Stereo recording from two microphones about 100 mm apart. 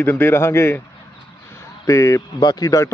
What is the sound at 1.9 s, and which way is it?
Speech, 30° left (ahead or behind).